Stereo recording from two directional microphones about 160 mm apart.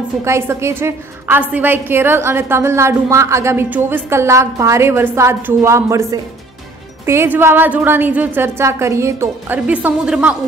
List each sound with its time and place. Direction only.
0.2 s a woman's voice: 15° right (ahead or behind)